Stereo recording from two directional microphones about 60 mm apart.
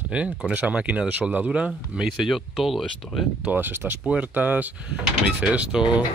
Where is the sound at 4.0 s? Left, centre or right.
Right.